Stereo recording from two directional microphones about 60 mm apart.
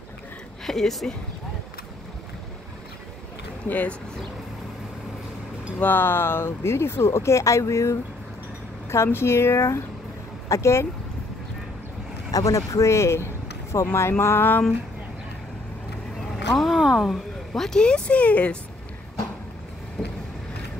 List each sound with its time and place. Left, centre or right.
0.7 s speech: centre
3.6 s speech: left
5.8 s speech: left
8.9 s speech: left
12.3 s speech: left
16.5 s speech: centre
17.6 s speech: centre
20.0 s vehicle: centre